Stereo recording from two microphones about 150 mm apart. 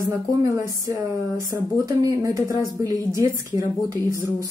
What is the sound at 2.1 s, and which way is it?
A woman's voice, 20° right (ahead or behind).